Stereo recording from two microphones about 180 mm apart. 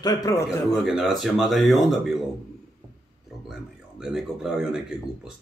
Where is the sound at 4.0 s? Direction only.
5° right (ahead or behind).